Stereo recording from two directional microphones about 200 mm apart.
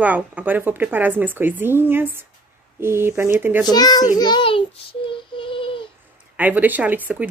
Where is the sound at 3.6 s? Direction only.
20° left (ahead or behind).